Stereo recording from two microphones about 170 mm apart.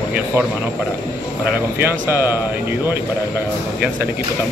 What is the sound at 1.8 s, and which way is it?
Speech, 15° right (ahead or behind).